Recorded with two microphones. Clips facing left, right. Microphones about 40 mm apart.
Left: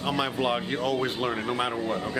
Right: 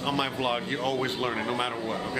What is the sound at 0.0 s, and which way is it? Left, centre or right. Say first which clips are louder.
Speech: left 1 dB; centre.